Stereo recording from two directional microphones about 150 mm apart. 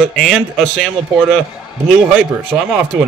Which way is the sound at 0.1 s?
Centre (ahead or behind).